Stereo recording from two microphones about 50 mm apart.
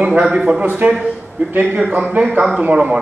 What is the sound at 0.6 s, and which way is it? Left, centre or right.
A man's voice, right.